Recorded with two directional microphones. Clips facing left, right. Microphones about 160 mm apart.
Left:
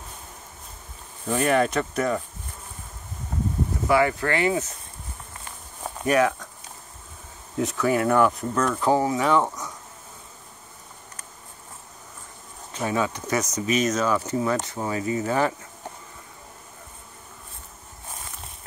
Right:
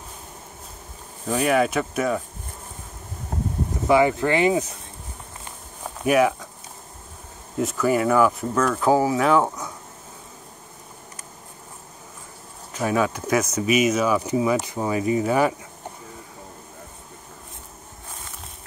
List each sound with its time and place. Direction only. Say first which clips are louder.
1.2 s speech: right 1 dB; 10° right (ahead or behind)
3.8 s speech: right 3 dB; 20° right (ahead or behind)
6.0 s speech: right 2 dB; 10° right (ahead or behind)
7.5 s speech: right 2 dB; centre (ahead or behind)
12.7 s speech: right 3 dB; 10° right (ahead or behind)